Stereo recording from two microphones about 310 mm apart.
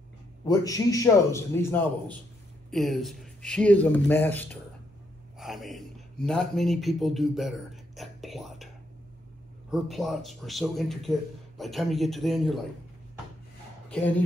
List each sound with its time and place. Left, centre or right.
0.5 s a man's voice: centre
9.7 s a man's voice: centre
13.8 s speech: centre